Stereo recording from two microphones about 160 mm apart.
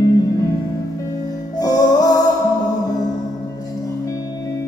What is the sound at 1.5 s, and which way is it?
Music, 25° left (ahead or behind).